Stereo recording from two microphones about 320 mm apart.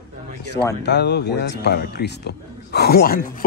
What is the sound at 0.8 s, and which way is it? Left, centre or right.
Speech, left.